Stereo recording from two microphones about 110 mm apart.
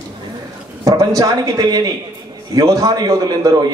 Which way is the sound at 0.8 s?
30° right (ahead or behind).